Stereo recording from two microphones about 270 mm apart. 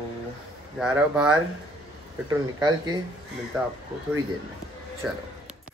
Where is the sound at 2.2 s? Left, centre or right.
Centre.